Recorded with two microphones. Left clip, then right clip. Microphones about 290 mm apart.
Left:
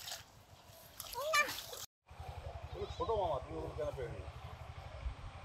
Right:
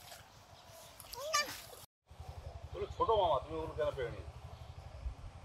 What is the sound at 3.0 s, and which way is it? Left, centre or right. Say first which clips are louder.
Speech: right 5 dB; right.